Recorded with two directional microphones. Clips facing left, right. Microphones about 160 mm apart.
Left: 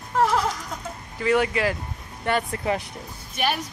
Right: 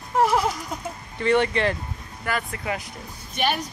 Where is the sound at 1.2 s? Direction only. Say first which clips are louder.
Right 1 dB; 5° left (ahead or behind).